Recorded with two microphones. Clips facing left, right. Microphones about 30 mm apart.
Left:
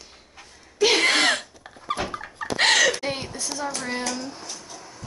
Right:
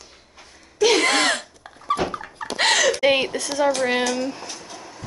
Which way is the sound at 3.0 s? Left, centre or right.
Right.